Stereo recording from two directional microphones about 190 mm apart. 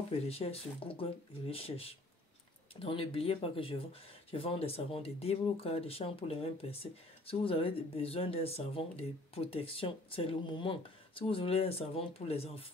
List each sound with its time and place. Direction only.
0.3 s speech: 30° left (ahead or behind)